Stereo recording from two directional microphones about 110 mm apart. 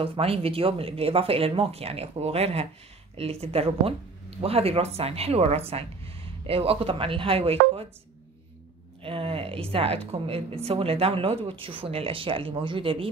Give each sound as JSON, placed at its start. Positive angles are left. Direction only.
{"t": 0.0, "sound": "a woman's voice", "side_deg": -60}
{"t": 9.0, "sound": "a woman's voice", "side_deg": -55}